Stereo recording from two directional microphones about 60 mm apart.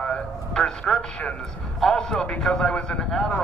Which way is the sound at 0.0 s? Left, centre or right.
Centre.